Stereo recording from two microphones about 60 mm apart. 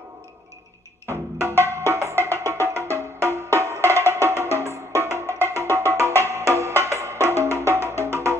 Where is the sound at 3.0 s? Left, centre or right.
Right.